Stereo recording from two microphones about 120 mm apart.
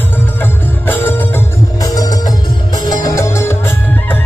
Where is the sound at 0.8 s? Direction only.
15° left (ahead or behind).